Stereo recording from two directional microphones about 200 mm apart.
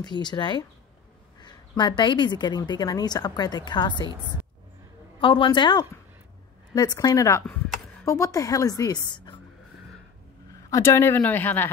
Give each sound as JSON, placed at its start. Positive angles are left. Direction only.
{"t": 0.0, "sound": "a woman's voice", "side_deg": 20}
{"t": 5.2, "sound": "a woman's voice", "side_deg": 25}
{"t": 10.7, "sound": "a woman's voice", "side_deg": 15}